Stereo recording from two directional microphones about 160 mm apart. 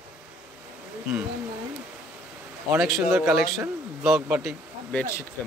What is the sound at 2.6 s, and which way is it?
Speech, centre (ahead or behind).